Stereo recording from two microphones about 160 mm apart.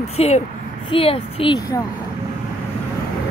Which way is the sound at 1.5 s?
20° left (ahead or behind).